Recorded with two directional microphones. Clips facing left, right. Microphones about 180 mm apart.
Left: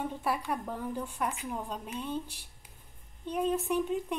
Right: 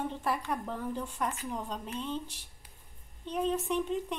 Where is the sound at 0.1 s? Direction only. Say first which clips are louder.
Even; 10° left (ahead or behind).